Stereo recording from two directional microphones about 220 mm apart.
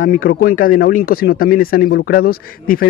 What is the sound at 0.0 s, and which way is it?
Speech, 40° left (ahead or behind).